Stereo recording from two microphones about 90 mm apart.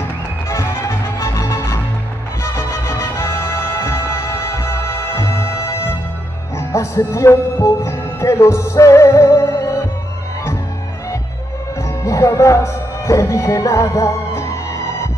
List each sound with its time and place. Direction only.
0.5 s music: 30° left (ahead or behind)
12.0 s music: 35° left (ahead or behind)